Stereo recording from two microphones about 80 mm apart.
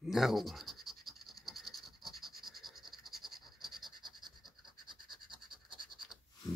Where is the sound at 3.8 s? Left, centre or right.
Right.